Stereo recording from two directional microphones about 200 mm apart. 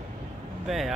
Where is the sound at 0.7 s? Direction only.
Centre (ahead or behind).